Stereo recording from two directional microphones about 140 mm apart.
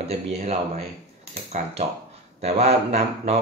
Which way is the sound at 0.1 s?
50° right (ahead or behind).